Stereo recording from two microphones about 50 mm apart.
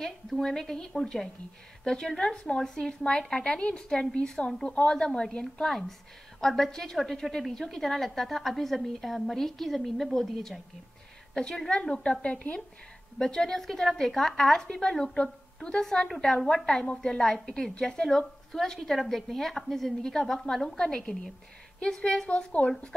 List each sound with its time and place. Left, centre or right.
0.4 s a woman's voice: centre
13.2 s a woman's voice: centre